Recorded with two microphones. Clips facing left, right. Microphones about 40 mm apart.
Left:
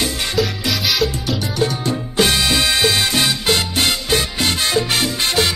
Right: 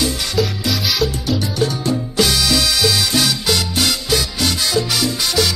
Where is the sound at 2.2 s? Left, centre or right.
Left.